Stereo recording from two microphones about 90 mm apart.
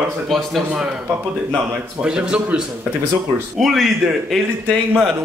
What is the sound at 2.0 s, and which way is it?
Speech, 10° right (ahead or behind).